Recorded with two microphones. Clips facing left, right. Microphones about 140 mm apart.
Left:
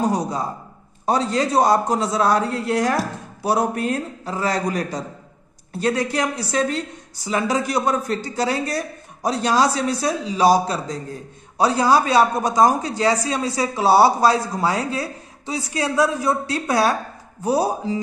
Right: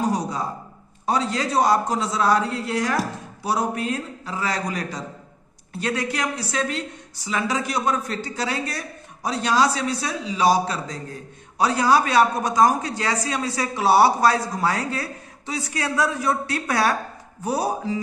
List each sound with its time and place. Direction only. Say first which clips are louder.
1.0 s a man's voice: left 3 dB; 40° left (ahead or behind)